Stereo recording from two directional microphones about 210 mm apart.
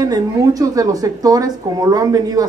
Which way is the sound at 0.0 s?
15° right (ahead or behind).